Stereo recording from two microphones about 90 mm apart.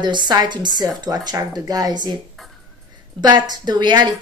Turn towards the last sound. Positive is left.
turn(degrees=-55)  # may be behind; listen again after turning